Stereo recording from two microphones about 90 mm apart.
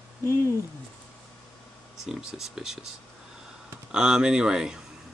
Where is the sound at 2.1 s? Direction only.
5° right (ahead or behind).